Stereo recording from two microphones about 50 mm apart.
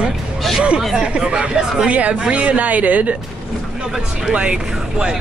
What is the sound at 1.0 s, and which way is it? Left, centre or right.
Speech, right.